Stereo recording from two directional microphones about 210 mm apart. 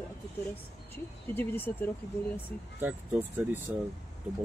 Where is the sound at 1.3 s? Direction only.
10° left (ahead or behind).